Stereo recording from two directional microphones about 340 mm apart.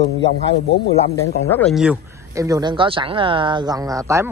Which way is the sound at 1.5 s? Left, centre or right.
Centre.